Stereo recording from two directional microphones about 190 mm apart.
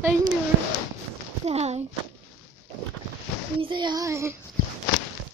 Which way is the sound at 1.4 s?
35° right (ahead or behind).